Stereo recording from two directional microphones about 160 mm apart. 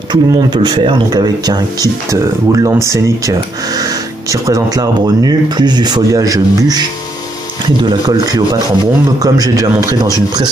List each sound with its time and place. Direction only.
0.1 s speech: 25° right (ahead or behind)
7.8 s speech: 25° right (ahead or behind)